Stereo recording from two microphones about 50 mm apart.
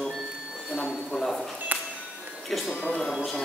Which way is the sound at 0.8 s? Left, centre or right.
Centre.